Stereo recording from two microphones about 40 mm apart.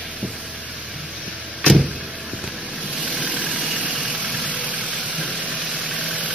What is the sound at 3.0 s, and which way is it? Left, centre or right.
Vehicle, right.